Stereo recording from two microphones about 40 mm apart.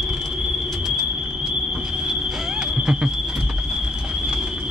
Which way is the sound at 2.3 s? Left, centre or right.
Centre.